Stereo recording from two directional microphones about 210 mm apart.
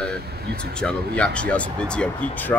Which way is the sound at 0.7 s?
5° left (ahead or behind).